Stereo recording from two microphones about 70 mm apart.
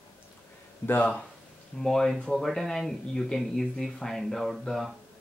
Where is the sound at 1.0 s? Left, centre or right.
Centre.